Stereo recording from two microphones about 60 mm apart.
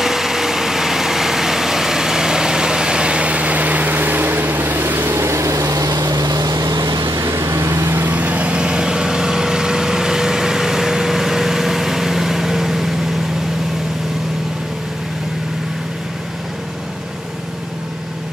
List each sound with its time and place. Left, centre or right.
0.0 s vehicle: centre; by 5.2 s right
5.2 s vehicle: right
7.3 s vehicle: right
8.1 s vehicle: right; by 12.9 s centre